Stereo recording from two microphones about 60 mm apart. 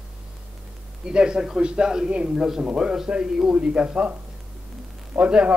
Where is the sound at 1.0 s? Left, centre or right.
Centre.